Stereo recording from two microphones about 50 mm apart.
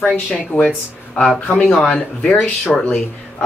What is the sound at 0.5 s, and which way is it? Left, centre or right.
Speech, left.